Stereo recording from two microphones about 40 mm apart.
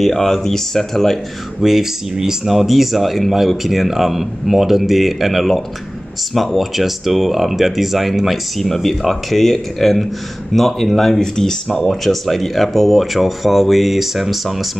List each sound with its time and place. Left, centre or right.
0.0 s speech: centre
1.6 s speech: centre
12.0 s speech: centre